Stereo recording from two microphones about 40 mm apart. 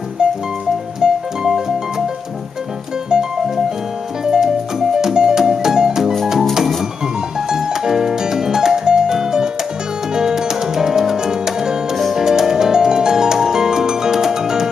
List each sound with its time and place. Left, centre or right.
0.2 s music: right
3.1 s music: centre
7.4 s music: centre